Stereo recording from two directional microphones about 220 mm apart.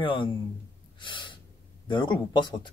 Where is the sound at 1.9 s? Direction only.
20° left (ahead or behind).